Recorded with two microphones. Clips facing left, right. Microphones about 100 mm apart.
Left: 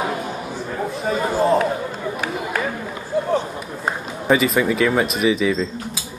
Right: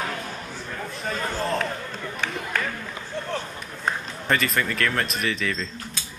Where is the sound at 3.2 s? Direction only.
10° left (ahead or behind).